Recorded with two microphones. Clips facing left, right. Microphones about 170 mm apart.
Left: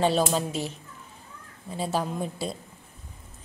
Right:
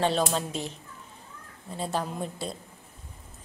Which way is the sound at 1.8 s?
5° left (ahead or behind).